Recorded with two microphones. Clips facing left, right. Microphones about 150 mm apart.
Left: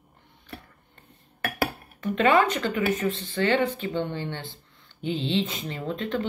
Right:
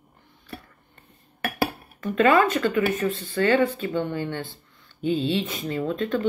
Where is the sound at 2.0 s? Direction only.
25° left (ahead or behind).